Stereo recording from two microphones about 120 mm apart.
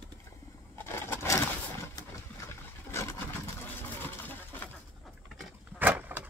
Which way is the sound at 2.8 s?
20° left (ahead or behind).